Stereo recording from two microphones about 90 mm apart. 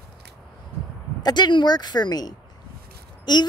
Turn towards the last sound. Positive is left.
turn(degrees=50)  # may be behind; listen again after turning